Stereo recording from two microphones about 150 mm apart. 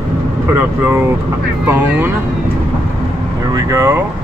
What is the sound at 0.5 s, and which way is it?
Speech, 15° right (ahead or behind).